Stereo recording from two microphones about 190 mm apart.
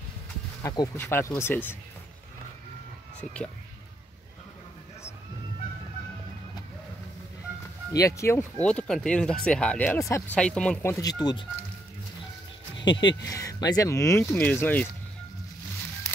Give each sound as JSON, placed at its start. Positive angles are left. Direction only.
{"t": 0.7, "sound": "speech", "side_deg": 15}
{"t": 7.9, "sound": "speech", "side_deg": 15}
{"t": 12.8, "sound": "speech", "side_deg": 25}